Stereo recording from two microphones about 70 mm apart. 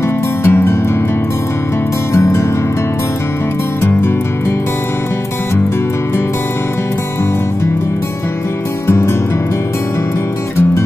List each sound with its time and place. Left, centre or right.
0.4 s music: left
2.1 s music: left
8.8 s music: left